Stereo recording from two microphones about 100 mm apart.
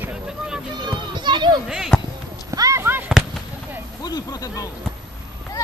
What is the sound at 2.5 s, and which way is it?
Basketball bounce, 35° right (ahead or behind).